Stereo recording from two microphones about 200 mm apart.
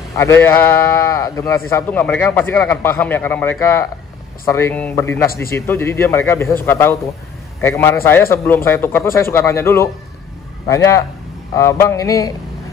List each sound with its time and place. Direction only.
0.1 s speech: 15° left (ahead or behind)